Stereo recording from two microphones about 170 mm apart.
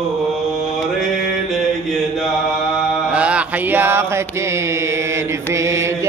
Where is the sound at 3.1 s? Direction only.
5° right (ahead or behind).